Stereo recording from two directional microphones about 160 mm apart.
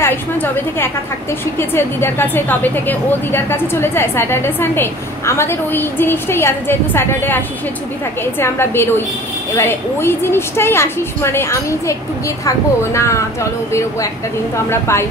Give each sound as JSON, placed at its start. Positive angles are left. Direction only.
{"t": 0.0, "sound": "a woman's voice", "side_deg": 15}